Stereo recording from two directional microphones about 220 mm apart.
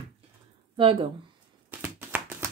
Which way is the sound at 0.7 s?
25° right (ahead or behind).